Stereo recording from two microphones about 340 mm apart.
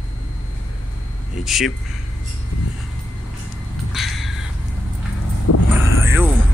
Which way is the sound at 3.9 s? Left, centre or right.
Centre.